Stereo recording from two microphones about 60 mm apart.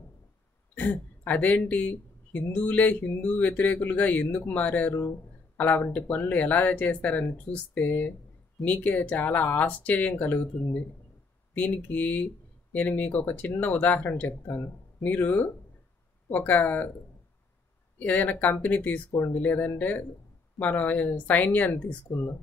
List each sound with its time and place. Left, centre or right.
0.7 s speech: left
17.9 s speech: left